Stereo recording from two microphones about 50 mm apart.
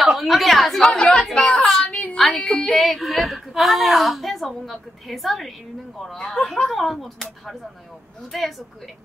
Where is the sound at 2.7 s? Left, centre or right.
Centre.